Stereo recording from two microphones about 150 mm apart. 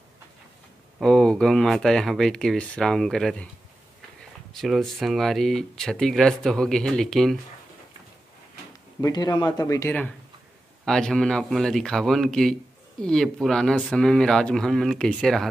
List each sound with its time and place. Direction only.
1.0 s speech: 5° left (ahead or behind)
4.6 s speech: centre (ahead or behind)
9.0 s speech: 25° left (ahead or behind); by 15.4 s 5° left (ahead or behind)